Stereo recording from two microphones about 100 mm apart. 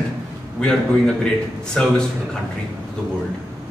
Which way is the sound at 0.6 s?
10° left (ahead or behind).